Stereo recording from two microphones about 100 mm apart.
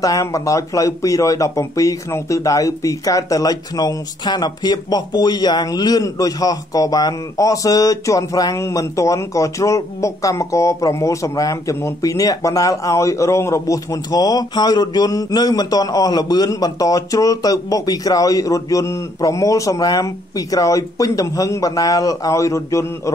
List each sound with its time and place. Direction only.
0.0 s speech: 35° left (ahead or behind)